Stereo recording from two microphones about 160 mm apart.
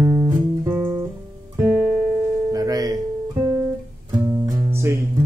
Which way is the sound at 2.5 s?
25° right (ahead or behind).